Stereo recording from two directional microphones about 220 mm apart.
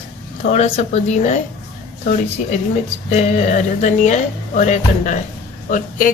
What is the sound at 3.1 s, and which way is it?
Speech, 30° left (ahead or behind).